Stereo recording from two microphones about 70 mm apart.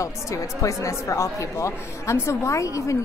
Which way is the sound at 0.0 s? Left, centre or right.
Left.